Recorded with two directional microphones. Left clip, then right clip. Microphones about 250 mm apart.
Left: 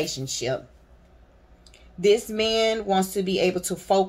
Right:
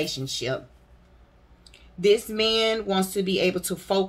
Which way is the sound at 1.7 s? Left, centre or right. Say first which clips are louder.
Even; centre.